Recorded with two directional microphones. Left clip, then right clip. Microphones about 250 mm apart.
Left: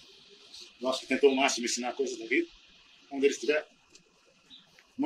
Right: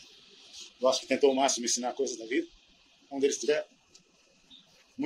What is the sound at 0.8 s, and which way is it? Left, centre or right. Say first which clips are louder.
Speech: right 1 dB; right.